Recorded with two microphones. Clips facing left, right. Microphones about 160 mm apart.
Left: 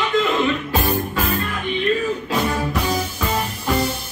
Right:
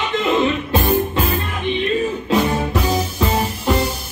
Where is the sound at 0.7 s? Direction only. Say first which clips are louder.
Right 4 dB; 25° right (ahead or behind).